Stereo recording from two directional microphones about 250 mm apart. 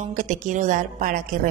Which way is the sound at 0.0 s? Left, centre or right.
Right.